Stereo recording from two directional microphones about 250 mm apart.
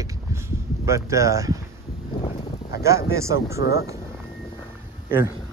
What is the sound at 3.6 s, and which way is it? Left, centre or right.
Speech, left.